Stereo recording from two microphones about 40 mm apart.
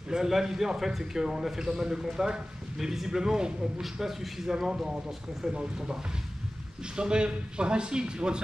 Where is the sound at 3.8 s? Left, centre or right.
Centre; by 8.4 s right.